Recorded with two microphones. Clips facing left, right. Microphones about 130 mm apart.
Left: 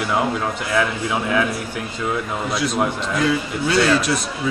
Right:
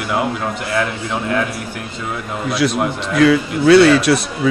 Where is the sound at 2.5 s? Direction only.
75° right (ahead or behind).